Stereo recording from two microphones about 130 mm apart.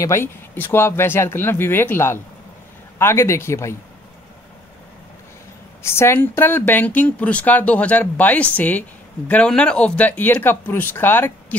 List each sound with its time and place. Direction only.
0.0 s speech: 20° left (ahead or behind)
5.8 s speech: 20° left (ahead or behind)